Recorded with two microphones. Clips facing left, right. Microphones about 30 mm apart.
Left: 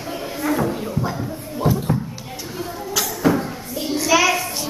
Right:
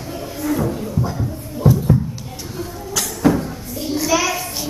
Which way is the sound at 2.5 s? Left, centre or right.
Centre.